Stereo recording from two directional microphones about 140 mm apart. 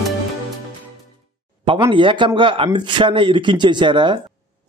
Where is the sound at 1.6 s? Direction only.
40° right (ahead or behind).